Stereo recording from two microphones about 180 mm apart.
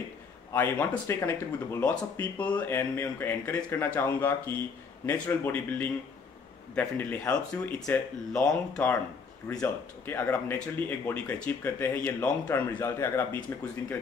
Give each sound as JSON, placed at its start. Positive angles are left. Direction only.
{"t": 0.5, "sound": "speech", "side_deg": 15}